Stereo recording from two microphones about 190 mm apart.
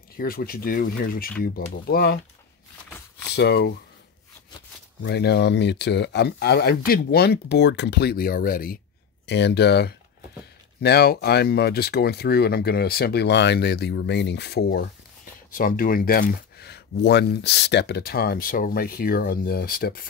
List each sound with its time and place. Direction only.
0.2 s speech: 50° left (ahead or behind)
3.3 s speech: 60° left (ahead or behind)
5.0 s speech: 60° left (ahead or behind)
9.2 s speech: 65° left (ahead or behind)